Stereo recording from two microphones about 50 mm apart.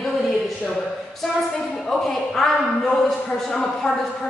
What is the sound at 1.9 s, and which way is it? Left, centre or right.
A man's voice, centre.